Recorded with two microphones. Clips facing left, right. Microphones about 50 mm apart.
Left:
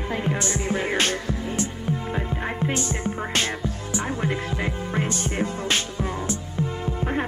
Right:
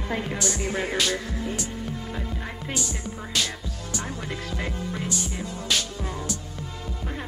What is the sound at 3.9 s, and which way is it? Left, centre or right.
Music, left.